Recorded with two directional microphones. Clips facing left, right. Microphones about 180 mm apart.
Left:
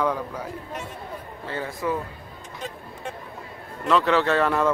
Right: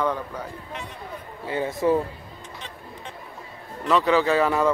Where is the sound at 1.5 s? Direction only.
20° right (ahead or behind).